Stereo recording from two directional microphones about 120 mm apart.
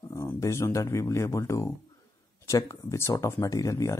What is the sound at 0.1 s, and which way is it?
Speech, 25° left (ahead or behind).